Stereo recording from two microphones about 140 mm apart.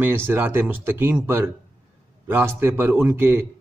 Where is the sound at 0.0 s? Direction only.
15° right (ahead or behind).